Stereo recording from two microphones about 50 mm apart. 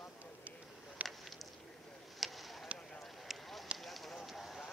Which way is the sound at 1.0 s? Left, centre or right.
Right.